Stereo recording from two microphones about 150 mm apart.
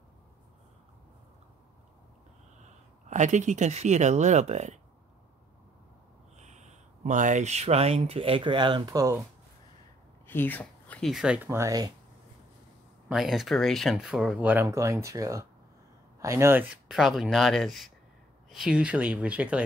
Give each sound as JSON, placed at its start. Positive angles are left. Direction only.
{"t": 3.1, "sound": "speech", "side_deg": -55}
{"t": 6.3, "sound": "speech", "side_deg": -50}
{"t": 10.2, "sound": "speech", "side_deg": 15}
{"t": 11.4, "sound": "speech", "side_deg": -20}
{"t": 13.1, "sound": "speech", "side_deg": 0}